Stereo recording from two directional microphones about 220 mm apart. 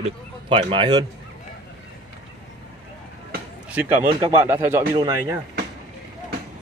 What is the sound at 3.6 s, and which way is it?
Speech, 5° right (ahead or behind).